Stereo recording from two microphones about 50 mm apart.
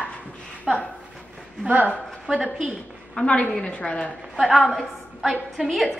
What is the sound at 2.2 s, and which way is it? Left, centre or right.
Speech, centre.